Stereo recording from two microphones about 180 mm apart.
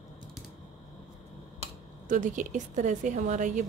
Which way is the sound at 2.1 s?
45° right (ahead or behind).